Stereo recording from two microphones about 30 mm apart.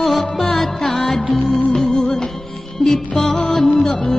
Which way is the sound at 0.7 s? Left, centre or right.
Left.